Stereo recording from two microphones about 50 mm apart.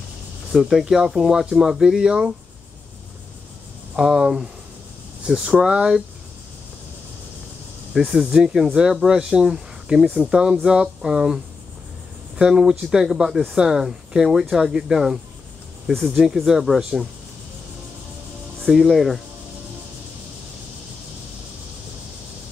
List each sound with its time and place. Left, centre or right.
0.5 s speech: centre
3.9 s speech: centre
7.9 s speech: centre
16.3 s speech: centre
18.7 s speech: centre